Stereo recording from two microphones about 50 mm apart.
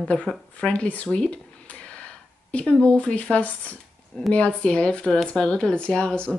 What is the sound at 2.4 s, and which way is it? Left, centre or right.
Speech, left.